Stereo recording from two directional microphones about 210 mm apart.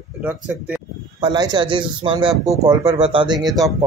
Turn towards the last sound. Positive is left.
turn(degrees=-15)  # may be behind; listen again after turning